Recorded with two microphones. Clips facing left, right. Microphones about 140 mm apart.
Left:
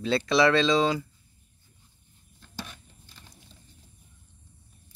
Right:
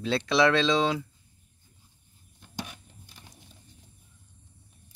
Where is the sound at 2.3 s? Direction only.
15° right (ahead or behind).